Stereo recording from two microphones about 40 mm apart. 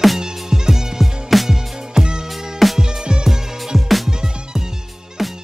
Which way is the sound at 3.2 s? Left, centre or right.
Centre.